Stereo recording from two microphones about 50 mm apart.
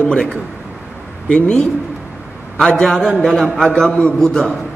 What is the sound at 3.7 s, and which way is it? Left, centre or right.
Speech, centre.